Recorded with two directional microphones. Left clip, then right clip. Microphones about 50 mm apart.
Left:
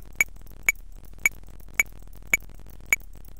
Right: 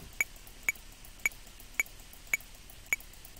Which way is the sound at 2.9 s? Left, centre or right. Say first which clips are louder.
Left 9 dB; centre.